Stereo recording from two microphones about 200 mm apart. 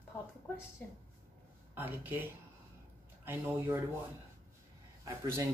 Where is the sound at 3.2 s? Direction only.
10° right (ahead or behind).